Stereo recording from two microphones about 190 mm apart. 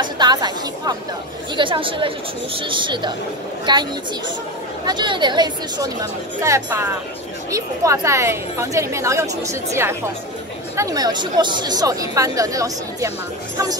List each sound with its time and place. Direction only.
0.0 s speech: 20° right (ahead or behind)
4.8 s a woman's voice: 25° right (ahead or behind)